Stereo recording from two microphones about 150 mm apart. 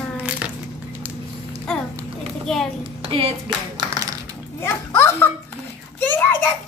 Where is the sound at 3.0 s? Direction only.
40° right (ahead or behind).